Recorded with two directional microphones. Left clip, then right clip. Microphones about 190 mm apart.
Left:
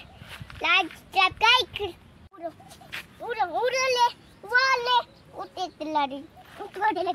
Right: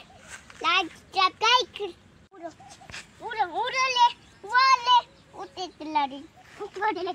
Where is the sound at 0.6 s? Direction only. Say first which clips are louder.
Left 2 dB; 15° left (ahead or behind).